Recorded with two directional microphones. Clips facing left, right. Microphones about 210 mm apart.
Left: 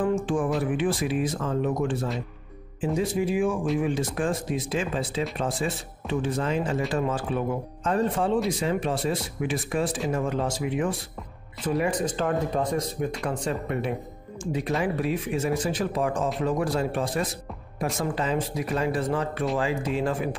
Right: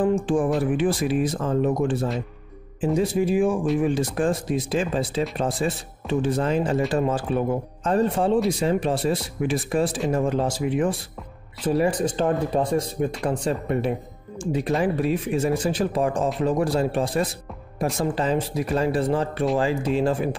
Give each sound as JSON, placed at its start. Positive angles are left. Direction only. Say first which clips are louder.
{"t": 0.6, "sound": "speech", "louder": "right 3 dB", "side_deg": -35}